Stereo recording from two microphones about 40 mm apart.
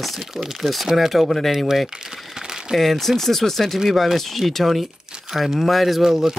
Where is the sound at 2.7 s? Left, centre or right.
Centre.